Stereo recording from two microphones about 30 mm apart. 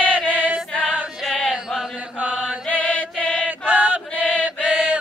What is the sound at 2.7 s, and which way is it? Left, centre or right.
Music, left.